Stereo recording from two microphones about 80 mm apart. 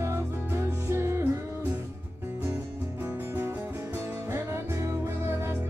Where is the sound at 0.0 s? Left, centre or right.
Right.